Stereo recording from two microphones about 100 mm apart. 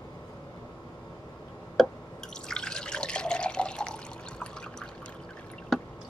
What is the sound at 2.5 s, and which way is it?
Water, 5° left (ahead or behind).